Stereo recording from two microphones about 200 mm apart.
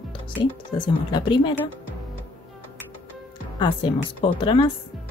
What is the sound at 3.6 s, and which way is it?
Speech, 25° left (ahead or behind).